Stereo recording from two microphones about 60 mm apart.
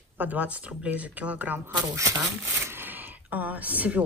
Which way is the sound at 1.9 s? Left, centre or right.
Right.